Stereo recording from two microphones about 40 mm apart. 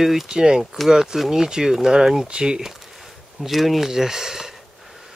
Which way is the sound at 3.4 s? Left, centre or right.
Centre.